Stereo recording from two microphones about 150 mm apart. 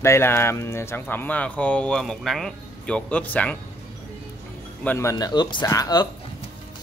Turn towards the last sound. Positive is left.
turn(degrees=25)  # may be behind; listen again after turning